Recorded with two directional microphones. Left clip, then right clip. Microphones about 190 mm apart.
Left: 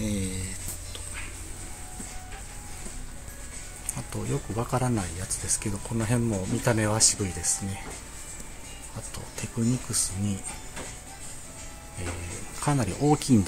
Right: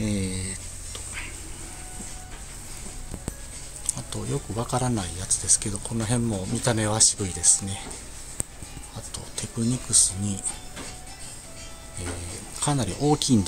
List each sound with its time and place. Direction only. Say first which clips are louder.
0.0 s a sound: right 3 dB; 20° right (ahead or behind)
3.9 s speech: right 1 dB; centre (ahead or behind)
9.1 s speech: right 2 dB; 5° left (ahead or behind)
12.5 s speech: right 1 dB; 5° left (ahead or behind)